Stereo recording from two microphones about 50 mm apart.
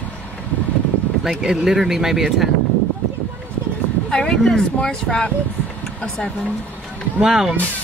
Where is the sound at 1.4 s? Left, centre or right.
Centre.